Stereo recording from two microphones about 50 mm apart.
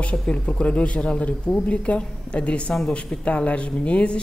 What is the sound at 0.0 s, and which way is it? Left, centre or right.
Speech, left.